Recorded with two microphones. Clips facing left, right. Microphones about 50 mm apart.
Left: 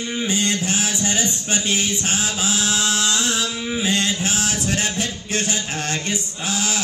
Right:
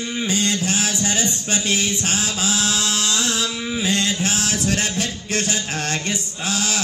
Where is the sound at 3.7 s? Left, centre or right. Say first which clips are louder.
Left 1 dB; left.